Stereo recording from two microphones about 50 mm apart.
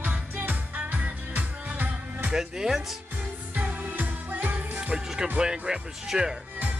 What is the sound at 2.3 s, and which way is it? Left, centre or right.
Music, centre.